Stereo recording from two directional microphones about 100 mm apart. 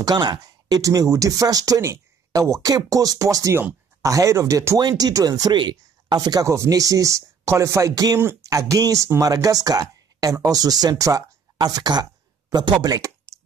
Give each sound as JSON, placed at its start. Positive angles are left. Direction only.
{"t": 0.0, "sound": "speech", "side_deg": -45}
{"t": 8.2, "sound": "speech", "side_deg": -25}
{"t": 8.5, "sound": "speech", "side_deg": -35}
{"t": 12.8, "sound": "a sound", "side_deg": -35}